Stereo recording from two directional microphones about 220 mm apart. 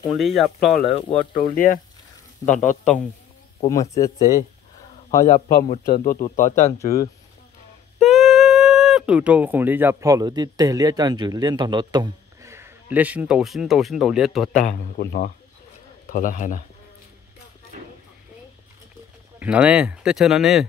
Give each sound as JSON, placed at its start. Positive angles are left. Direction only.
{"t": 0.1, "sound": "speech", "side_deg": 0}
{"t": 1.1, "sound": "speech", "side_deg": 40}
{"t": 3.9, "sound": "speech", "side_deg": 15}
{"t": 5.5, "sound": "speech", "side_deg": 40}
{"t": 8.0, "sound": "speech", "side_deg": 0}
{"t": 14.5, "sound": "speech", "side_deg": 35}
{"t": 19.4, "sound": "speech", "side_deg": -5}